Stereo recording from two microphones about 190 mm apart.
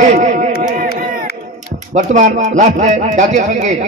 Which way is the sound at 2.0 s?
40° right (ahead or behind).